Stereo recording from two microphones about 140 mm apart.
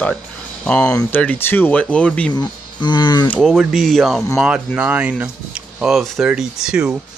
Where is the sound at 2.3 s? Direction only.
30° left (ahead or behind).